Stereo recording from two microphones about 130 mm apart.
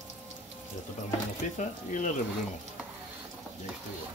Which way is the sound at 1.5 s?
75° left (ahead or behind).